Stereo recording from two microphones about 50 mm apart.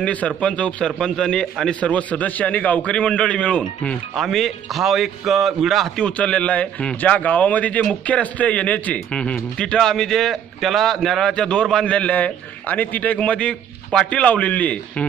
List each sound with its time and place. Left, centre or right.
0.0 s a man's voice: left; by 1.8 s centre
1.8 s a man's voice: left
4.1 s a man's voice: centre
5.9 s a man's voice: left; by 11.3 s centre
11.3 s a man's voice: centre